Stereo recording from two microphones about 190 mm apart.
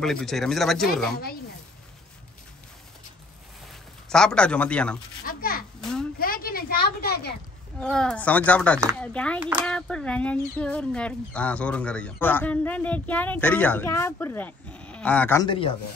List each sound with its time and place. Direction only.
0.0 s a man's voice: centre (ahead or behind)
4.1 s a man's voice: 5° left (ahead or behind)
5.2 s a sound: 50° left (ahead or behind)
5.8 s a sound: centre (ahead or behind)
6.1 s a sound: 50° left (ahead or behind)
7.8 s speech: 5° left (ahead or behind)
9.4 s speech: 5° right (ahead or behind)
9.7 s speech: 5° left (ahead or behind)
15.4 s a man's voice: 25° left (ahead or behind)